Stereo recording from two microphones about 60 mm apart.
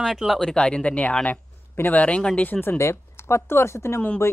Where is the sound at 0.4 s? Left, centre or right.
Centre; by 2.8 s left.